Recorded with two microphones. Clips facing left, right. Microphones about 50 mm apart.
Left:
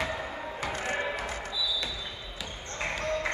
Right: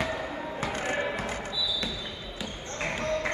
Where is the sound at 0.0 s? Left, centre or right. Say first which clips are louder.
Right 2 dB; centre.